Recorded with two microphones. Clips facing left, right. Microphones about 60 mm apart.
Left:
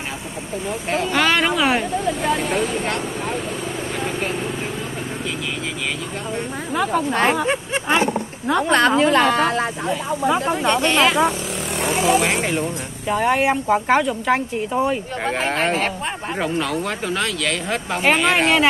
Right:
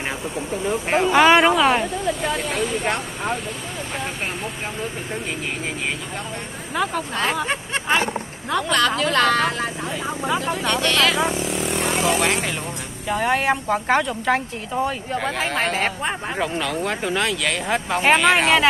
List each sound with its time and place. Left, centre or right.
1.1 s speech: centre
1.6 s speech: centre
6.7 s speech: centre
8.5 s a woman's voice: left
11.1 s vehicle: centre
13.1 s speech: centre